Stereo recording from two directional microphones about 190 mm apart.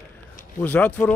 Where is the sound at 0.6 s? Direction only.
10° left (ahead or behind).